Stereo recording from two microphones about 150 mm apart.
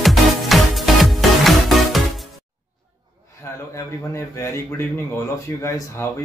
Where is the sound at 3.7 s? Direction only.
20° left (ahead or behind).